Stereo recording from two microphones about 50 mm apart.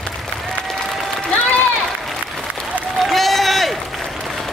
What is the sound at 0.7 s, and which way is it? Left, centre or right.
Applause, centre.